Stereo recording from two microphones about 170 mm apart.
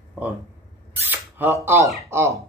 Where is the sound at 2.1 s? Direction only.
15° right (ahead or behind).